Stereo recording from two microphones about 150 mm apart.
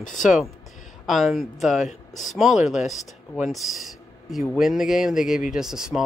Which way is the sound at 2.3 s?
Centre (ahead or behind).